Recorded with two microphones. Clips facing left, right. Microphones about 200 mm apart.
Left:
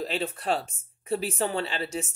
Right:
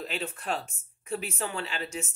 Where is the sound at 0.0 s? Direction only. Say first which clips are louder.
Left 5 dB; 35° left (ahead or behind).